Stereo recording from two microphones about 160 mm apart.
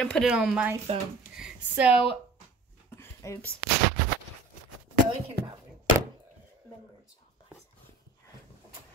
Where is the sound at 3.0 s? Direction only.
20° left (ahead or behind).